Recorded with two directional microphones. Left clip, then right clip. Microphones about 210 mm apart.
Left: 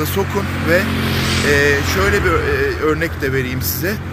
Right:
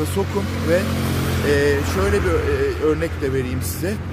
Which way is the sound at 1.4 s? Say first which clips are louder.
Left 3 dB; 10° right (ahead or behind).